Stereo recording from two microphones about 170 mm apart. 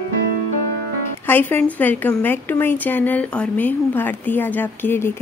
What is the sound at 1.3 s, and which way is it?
A woman's voice, 10° left (ahead or behind).